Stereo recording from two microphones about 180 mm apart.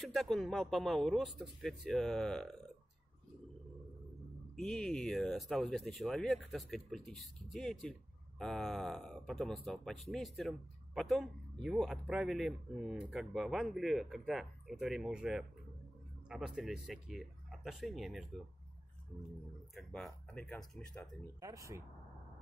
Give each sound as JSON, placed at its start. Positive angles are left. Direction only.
{"t": 0.0, "sound": "speech", "side_deg": 0}
{"t": 4.6, "sound": "speech", "side_deg": 0}
{"t": 19.7, "sound": "speech", "side_deg": 0}
{"t": 21.4, "sound": "speech", "side_deg": -20}